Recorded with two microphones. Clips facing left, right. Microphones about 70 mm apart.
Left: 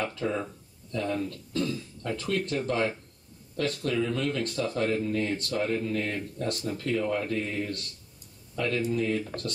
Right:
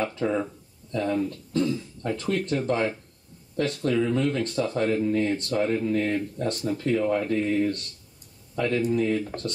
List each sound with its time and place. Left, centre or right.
0.0 s speech: right
6.3 s speech: right
6.6 s speech: right
9.0 s speech: centre